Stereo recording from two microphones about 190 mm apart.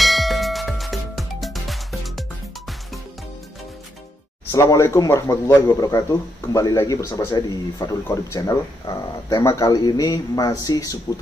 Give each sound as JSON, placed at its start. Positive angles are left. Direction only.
{"t": 0.0, "sound": "clang", "side_deg": 0}
{"t": 4.5, "sound": "a man's voice", "side_deg": 15}